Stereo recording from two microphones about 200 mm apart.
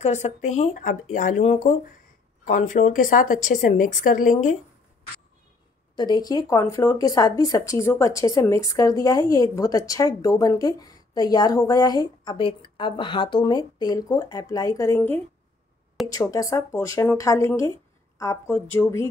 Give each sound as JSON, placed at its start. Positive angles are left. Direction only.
{"t": 0.0, "sound": "a woman's voice", "side_deg": 35}
{"t": 5.9, "sound": "speech", "side_deg": 20}